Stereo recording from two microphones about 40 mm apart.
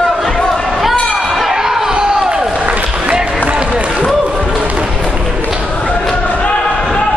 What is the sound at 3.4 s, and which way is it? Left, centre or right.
Run, right.